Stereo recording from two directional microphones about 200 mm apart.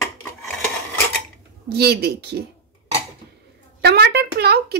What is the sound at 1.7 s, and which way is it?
Speech, 55° right (ahead or behind).